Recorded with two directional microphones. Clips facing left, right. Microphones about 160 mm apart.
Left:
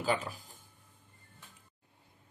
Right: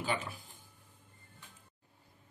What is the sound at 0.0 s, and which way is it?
Speech, 40° left (ahead or behind).